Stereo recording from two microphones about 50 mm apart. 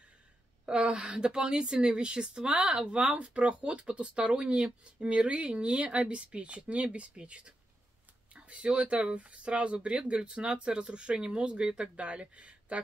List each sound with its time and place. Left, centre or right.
0.7 s speech: centre